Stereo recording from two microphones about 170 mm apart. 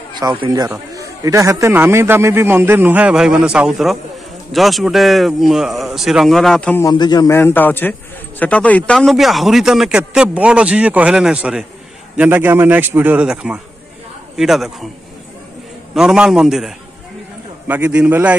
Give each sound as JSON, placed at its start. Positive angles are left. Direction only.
{"t": 0.1, "sound": "a man's voice", "side_deg": -25}
{"t": 6.8, "sound": "a man's voice", "side_deg": 25}
{"t": 15.9, "sound": "a man's voice", "side_deg": -5}